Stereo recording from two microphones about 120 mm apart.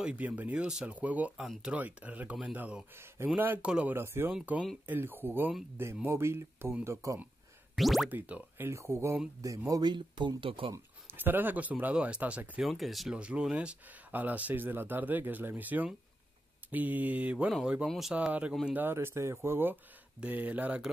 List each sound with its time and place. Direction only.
0.0 s speech: 10° right (ahead or behind); by 7.2 s 25° right (ahead or behind)
7.7 s boing: centre (ahead or behind)
8.1 s speech: 15° right (ahead or behind)
9.7 s speech: 35° right (ahead or behind)
11.1 s speech: 15° right (ahead or behind)
18.5 s speech: centre (ahead or behind)
18.8 s speech: 20° right (ahead or behind)